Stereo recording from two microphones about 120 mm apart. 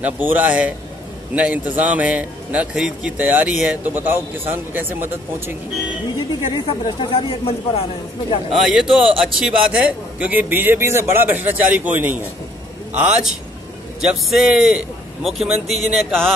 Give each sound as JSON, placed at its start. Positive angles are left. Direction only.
{"t": 0.0, "sound": "a man's voice", "side_deg": -10}
{"t": 6.5, "sound": "speech", "side_deg": 45}
{"t": 8.5, "sound": "a man's voice", "side_deg": 0}